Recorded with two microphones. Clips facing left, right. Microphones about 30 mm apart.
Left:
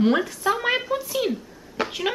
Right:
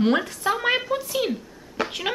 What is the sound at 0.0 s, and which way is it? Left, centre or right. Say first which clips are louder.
Speech: left 1 dB; centre.